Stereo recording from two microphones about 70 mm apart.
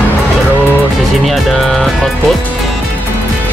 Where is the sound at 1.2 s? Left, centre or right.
Centre.